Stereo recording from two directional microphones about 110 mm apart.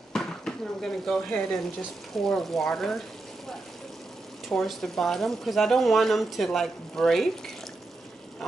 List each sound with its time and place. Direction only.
0.1 s speech: 5° left (ahead or behind)
4.5 s speech: 5° left (ahead or behind)